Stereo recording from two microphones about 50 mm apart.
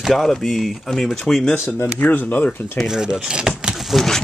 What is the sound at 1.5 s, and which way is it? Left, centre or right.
Speech, left.